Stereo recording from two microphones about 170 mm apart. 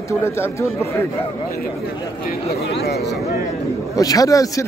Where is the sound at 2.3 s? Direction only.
65° left (ahead or behind).